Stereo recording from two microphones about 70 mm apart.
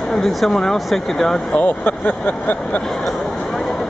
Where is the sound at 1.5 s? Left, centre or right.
Left.